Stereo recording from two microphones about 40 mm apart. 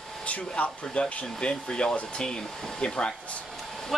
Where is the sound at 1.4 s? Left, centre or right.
Left.